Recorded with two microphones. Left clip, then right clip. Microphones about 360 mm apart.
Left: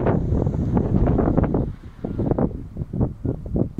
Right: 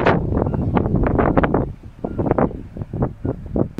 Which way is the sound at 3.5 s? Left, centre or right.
Right.